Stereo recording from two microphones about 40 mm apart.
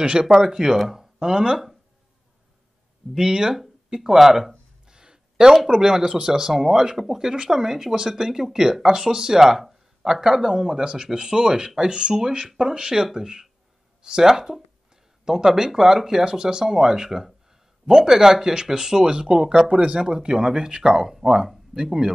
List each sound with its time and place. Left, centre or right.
0.0 s speech: right
3.2 s speech: centre
4.8 s a sound: centre
5.8 s speech: centre
10.2 s speech: centre